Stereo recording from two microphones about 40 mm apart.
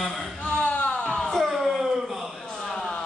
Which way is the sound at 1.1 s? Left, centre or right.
Centre.